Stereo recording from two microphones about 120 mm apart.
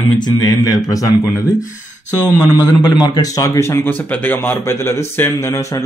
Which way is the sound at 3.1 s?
30° left (ahead or behind).